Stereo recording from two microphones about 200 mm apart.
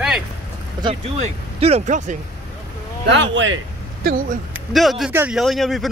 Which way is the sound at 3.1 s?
65° right (ahead or behind).